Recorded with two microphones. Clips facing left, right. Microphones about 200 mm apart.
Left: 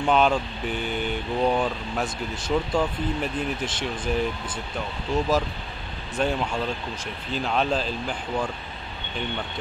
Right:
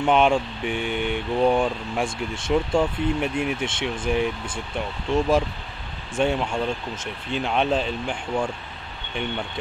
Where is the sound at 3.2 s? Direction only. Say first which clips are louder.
Right 3 dB; 10° right (ahead or behind).